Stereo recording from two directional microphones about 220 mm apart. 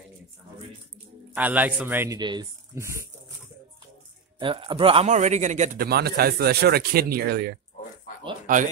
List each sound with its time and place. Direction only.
1.3 s speech: 5° right (ahead or behind)
4.4 s a man's voice: 25° right (ahead or behind); by 8.6 s 40° right (ahead or behind)